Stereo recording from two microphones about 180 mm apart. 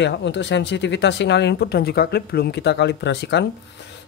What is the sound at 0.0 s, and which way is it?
Speech, 80° left.